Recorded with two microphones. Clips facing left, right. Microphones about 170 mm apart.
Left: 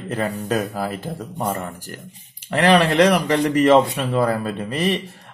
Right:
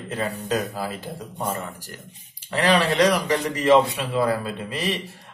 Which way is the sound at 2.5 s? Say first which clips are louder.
Left 4 dB; 55° left (ahead or behind).